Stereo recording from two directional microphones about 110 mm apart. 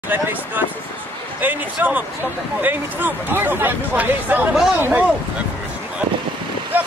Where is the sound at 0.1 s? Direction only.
15° right (ahead or behind).